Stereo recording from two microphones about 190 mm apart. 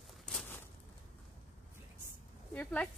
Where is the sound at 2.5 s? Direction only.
10° left (ahead or behind).